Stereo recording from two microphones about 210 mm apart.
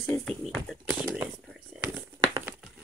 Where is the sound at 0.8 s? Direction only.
10° right (ahead or behind).